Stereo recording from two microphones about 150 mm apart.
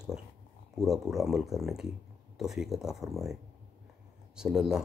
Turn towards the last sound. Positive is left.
turn(degrees=-5)  # may be behind; listen again after turning